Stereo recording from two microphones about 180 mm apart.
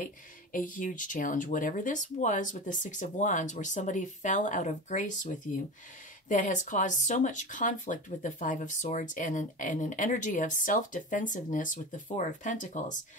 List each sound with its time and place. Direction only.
0.0 s speech: 50° left (ahead or behind)